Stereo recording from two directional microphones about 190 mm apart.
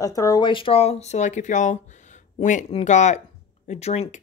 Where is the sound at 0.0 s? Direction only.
20° left (ahead or behind).